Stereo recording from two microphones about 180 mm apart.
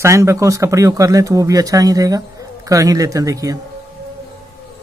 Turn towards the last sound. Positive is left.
turn(degrees=-20)  # may be behind; listen again after turning